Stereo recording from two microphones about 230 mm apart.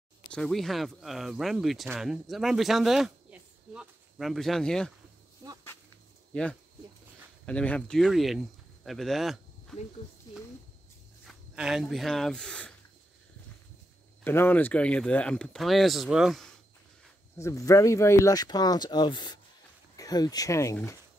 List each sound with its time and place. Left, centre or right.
0.3 s speech: centre
7.4 s speech: centre
11.2 s speech: centre
14.2 s speech: centre
17.4 s speech: centre